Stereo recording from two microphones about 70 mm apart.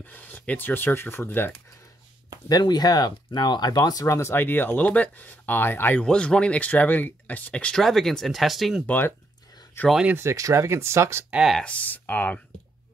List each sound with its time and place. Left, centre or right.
0.0 s speech: left
2.4 s speech: left
4.1 s speech: left
5.9 s speech: centre
7.7 s speech: centre
8.8 s speech: left
10.1 s speech: right
11.6 s speech: left